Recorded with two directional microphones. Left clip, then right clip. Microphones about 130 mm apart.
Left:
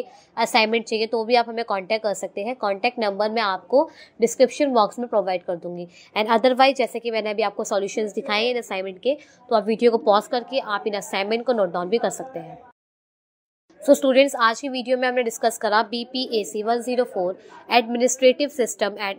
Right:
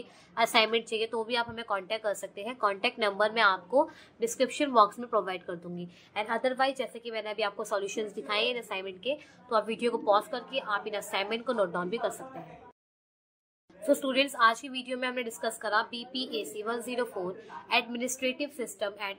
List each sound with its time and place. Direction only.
0.3 s a woman's voice: 40° left (ahead or behind)
4.5 s a woman's voice: 30° left (ahead or behind)
6.1 s a woman's voice: 65° left (ahead or behind)
6.7 s a woman's voice: 50° left (ahead or behind)
13.8 s a woman's voice: 50° left (ahead or behind)
17.6 s a woman's voice: 55° left (ahead or behind)